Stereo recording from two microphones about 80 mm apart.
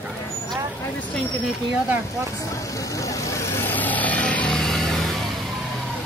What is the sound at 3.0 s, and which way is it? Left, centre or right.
Vehicle, left.